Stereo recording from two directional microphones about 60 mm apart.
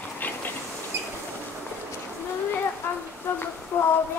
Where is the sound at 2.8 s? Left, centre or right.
Left.